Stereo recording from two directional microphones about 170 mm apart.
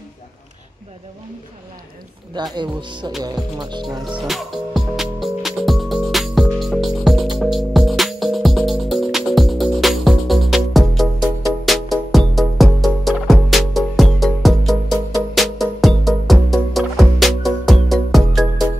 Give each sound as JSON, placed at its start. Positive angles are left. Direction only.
{"t": 2.5, "sound": "speech", "side_deg": -25}
{"t": 4.0, "sound": "music", "side_deg": 0}